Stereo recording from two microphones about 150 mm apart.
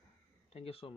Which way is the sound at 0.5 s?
40° left (ahead or behind).